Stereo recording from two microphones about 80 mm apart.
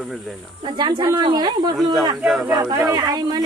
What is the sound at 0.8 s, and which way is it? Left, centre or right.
Speech, right.